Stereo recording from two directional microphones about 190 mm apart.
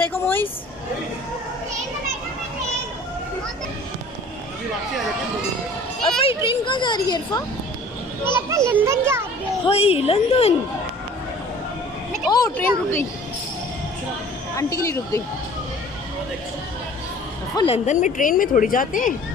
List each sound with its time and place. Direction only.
0.0 s speech: 10° left (ahead or behind)
6.2 s speech: 25° left (ahead or behind)
8.2 s a child's voice: 10° right (ahead or behind)
9.7 s a woman's voice: 30° left (ahead or behind)
12.3 s speech: 20° left (ahead or behind)
14.5 s speech: 15° left (ahead or behind)
17.6 s speech: 30° left (ahead or behind)